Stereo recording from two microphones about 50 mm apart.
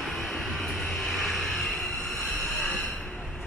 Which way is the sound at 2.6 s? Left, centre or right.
Left.